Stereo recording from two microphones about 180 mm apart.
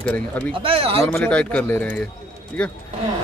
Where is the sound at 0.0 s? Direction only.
5° left (ahead or behind).